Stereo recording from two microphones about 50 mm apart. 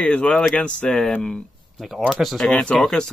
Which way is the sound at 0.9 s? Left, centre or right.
Centre.